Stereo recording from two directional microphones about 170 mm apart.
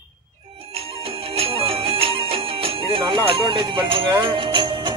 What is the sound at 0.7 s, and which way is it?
Music, 35° right (ahead or behind).